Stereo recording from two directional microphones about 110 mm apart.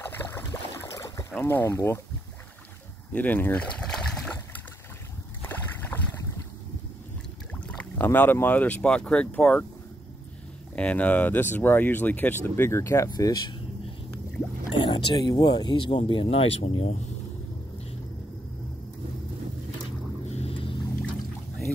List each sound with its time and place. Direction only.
0.0 s boat: 20° left (ahead or behind)
1.4 s speech: 20° left (ahead or behind)
3.1 s a sound: 15° left (ahead or behind)
5.4 s boat: 20° left (ahead or behind)
7.6 s speech: 15° left (ahead or behind)
10.8 s speech: 10° left (ahead or behind); by 13.6 s 35° left (ahead or behind)
14.8 s speech: 45° left (ahead or behind); by 17.0 s 70° left (ahead or behind)
20.2 s vehicle: 80° left